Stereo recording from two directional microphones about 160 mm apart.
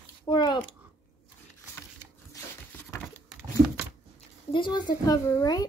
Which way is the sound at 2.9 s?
20° left (ahead or behind).